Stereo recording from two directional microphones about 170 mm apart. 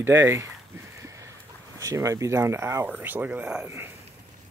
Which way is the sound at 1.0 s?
15° right (ahead or behind).